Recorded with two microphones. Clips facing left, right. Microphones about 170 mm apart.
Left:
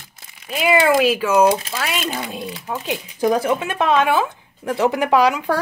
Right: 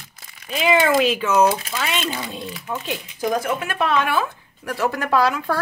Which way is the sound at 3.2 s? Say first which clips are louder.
Left 5 dB; 30° left (ahead or behind).